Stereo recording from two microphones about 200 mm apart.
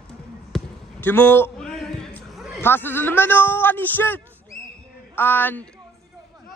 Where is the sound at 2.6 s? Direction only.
10° left (ahead or behind).